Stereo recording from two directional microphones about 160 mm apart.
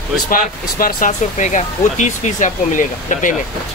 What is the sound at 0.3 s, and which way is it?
Speech, 65° left (ahead or behind).